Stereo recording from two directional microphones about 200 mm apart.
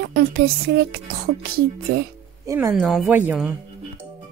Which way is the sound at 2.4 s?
15° right (ahead or behind).